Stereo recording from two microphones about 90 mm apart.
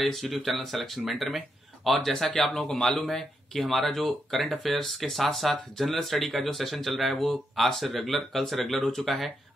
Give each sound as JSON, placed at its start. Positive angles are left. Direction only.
{"t": 0.0, "sound": "speech", "side_deg": 0}